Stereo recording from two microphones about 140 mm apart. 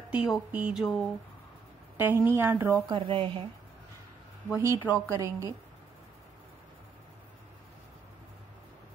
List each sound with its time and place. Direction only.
0.1 s speech: 10° right (ahead or behind)
2.0 s speech: 15° right (ahead or behind)
2.9 s speech: 40° right (ahead or behind)
4.5 s a woman's voice: 20° right (ahead or behind)